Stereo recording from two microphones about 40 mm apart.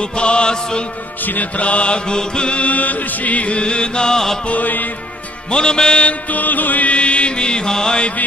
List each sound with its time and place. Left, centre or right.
0.0 s mantra: left
1.2 s music: left
1.6 s mantra: left; by 4.4 s centre
4.5 s music: left
5.5 s mantra: left
6.3 s music: left
6.9 s music: left